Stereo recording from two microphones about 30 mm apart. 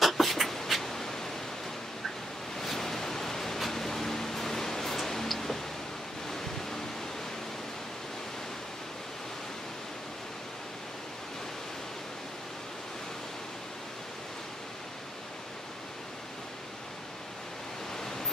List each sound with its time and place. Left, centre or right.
0.0 s beatboxing: centre
0.8 s pink noise: centre
2.6 s a sound: centre
6.3 s waves: centre
17.9 s waves: centre